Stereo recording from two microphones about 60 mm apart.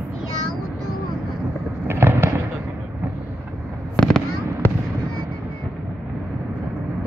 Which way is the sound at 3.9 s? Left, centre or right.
Centre.